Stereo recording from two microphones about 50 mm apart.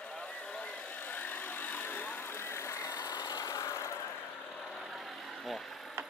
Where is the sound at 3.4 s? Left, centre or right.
Left.